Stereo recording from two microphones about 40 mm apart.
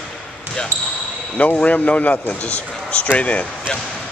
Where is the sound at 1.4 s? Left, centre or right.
Left.